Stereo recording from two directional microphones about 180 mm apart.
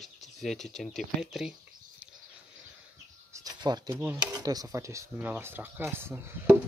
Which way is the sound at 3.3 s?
20° right (ahead or behind).